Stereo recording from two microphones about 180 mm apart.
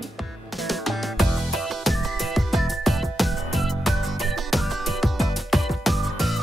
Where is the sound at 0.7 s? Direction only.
Centre (ahead or behind).